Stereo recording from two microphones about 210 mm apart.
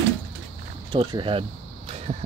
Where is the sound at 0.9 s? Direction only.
20° right (ahead or behind).